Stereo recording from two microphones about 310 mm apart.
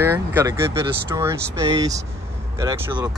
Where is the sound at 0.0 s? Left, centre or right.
Centre.